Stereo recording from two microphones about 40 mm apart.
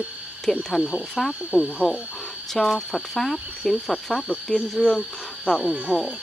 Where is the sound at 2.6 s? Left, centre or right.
Centre.